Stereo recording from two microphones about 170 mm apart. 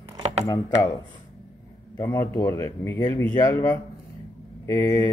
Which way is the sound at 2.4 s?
15° left (ahead or behind).